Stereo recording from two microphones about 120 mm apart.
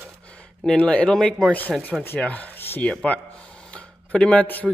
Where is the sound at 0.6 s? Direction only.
10° left (ahead or behind).